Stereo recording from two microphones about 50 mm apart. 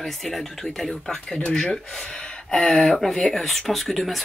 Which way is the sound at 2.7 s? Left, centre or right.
Centre.